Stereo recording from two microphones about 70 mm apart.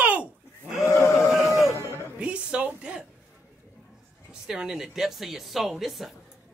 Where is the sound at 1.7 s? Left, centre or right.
Right.